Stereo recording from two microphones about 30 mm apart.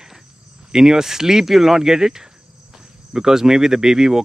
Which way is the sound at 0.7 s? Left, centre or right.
Right.